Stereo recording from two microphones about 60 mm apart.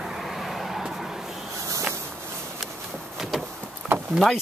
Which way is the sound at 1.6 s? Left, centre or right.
Right.